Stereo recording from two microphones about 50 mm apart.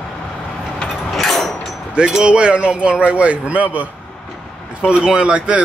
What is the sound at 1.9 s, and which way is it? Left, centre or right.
Speech, centre.